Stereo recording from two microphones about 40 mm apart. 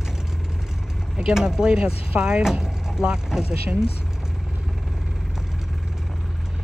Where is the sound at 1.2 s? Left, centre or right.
Centre.